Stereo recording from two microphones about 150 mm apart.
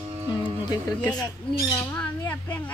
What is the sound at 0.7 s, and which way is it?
Speech, 25° left (ahead or behind).